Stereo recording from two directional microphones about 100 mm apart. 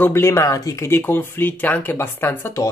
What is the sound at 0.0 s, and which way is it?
Speech, 25° left (ahead or behind).